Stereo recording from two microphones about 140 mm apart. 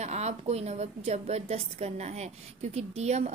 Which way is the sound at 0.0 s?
50° right (ahead or behind).